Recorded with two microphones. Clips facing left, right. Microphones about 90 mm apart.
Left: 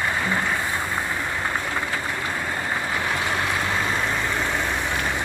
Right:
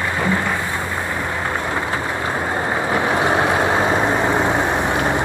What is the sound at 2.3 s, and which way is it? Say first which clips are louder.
Vehicle: right 6 dB; 50° right (ahead or behind).